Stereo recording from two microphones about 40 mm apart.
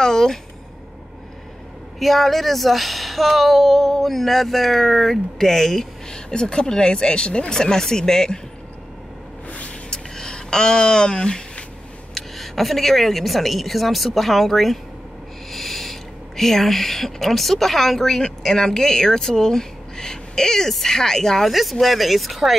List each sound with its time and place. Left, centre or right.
0.0 s speech: centre
2.0 s speech: centre
9.5 s vehicle: left
9.8 s a sound: centre
12.1 s speech: centre
21.5 s speech: centre